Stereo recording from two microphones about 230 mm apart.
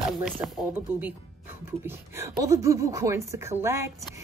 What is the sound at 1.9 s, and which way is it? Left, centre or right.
A woman's voice, centre.